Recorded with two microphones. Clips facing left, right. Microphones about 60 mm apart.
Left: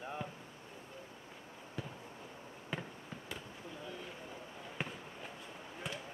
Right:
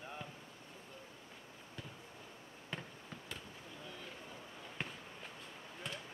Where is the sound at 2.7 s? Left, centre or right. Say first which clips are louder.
Left 4 dB; centre.